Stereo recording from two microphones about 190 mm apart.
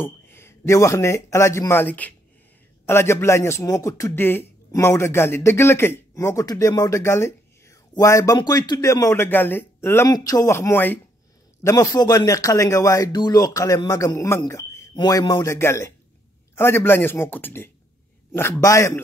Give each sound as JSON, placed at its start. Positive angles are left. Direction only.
{"t": 0.0, "sound": "speech", "side_deg": 10}